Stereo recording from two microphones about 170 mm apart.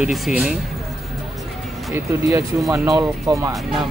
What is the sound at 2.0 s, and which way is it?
Speech, 20° right (ahead or behind).